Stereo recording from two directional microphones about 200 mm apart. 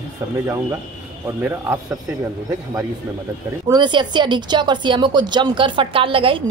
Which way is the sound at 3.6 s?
20° right (ahead or behind).